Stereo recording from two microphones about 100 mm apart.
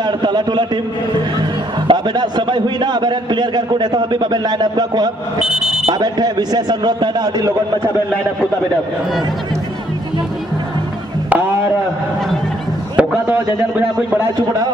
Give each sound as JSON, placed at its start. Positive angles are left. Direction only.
{"t": 0.0, "sound": "a man's voice", "side_deg": -50}
{"t": 1.9, "sound": "a man's voice", "side_deg": -45}
{"t": 5.4, "sound": "speech", "side_deg": -5}
{"t": 5.9, "sound": "a man's voice", "side_deg": -45}
{"t": 12.9, "sound": "a man's voice", "side_deg": -15}